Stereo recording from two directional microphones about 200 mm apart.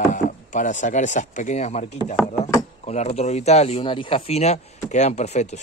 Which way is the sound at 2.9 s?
35° left (ahead or behind).